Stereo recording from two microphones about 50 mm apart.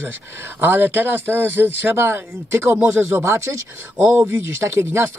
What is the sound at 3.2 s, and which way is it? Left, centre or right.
Speech, right.